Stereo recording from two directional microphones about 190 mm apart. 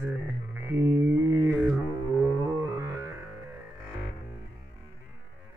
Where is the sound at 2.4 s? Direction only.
20° right (ahead or behind).